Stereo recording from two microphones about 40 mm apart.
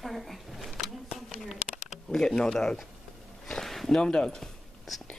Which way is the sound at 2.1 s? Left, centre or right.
Centre.